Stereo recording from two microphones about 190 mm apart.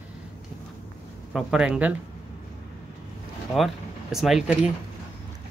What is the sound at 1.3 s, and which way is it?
Speech, 5° right (ahead or behind).